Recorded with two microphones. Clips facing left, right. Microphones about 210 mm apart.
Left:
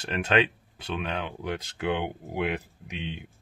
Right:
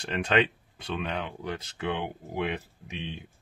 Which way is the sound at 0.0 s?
5° left (ahead or behind).